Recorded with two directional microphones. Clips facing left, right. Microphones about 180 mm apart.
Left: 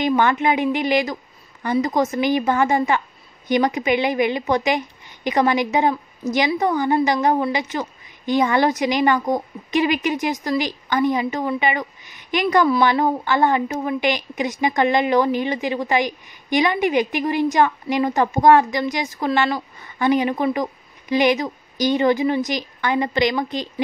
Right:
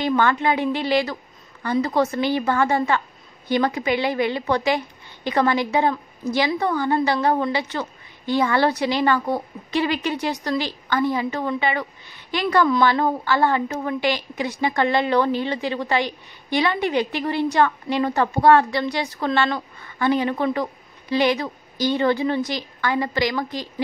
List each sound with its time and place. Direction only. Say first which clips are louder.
0.0 s a woman's voice: left 2 dB; 15° left (ahead or behind)